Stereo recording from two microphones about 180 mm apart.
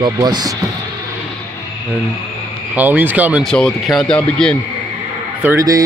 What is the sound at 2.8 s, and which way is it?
Speech, 10° right (ahead or behind).